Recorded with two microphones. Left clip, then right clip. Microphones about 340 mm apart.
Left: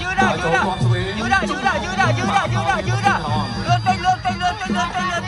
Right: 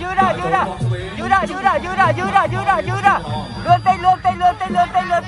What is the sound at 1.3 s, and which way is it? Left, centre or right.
Music, right.